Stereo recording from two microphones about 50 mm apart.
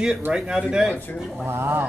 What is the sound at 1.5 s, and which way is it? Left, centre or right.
Speech, right.